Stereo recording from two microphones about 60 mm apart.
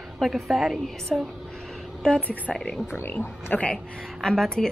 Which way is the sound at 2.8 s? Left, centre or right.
Left.